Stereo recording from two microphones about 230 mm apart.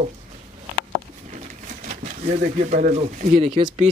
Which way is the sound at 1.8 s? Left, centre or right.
Right.